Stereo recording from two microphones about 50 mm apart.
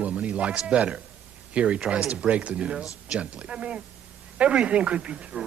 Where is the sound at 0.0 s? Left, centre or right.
Right.